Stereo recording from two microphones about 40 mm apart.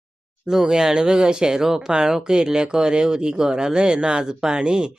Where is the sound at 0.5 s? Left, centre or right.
Centre.